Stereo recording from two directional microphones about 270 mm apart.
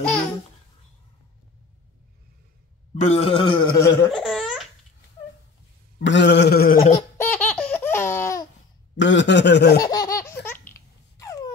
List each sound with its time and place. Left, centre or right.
3.0 s a man's voice: left
4.1 s laughter: centre
5.9 s a sound: left
7.2 s laughter: centre
8.9 s a sound: left
9.8 s laughter: centre